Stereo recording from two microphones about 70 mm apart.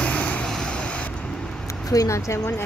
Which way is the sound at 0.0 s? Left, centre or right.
Centre.